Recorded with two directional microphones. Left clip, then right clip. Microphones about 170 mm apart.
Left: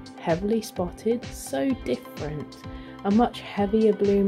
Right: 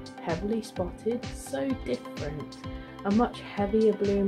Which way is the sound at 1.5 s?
50° left (ahead or behind).